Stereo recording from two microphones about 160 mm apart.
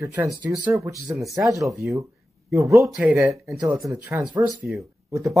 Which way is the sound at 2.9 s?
Centre (ahead or behind).